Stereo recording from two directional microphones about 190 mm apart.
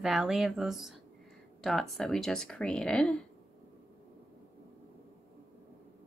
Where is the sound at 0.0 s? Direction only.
Centre (ahead or behind).